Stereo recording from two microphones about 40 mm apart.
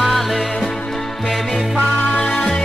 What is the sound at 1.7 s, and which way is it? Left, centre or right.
Music, left.